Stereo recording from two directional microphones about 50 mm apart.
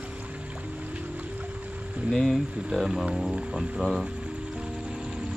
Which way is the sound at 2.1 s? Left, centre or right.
Centre.